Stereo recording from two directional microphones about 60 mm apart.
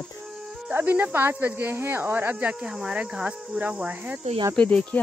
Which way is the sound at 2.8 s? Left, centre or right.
Centre.